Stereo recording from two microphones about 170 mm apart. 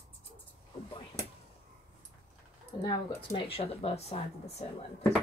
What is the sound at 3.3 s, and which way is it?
Speech, 35° left (ahead or behind).